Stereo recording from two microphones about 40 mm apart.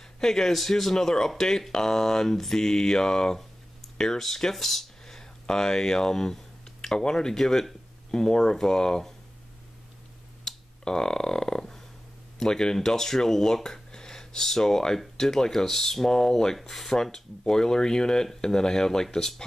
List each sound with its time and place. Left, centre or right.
0.2 s speech: centre
10.4 s finger snapping: centre
12.4 s speech: centre